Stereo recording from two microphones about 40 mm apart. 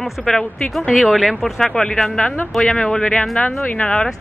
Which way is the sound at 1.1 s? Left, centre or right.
Centre.